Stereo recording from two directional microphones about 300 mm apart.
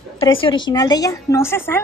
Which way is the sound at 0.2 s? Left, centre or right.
Centre.